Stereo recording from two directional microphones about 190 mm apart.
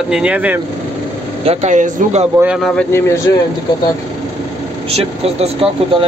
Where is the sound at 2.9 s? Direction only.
15° left (ahead or behind).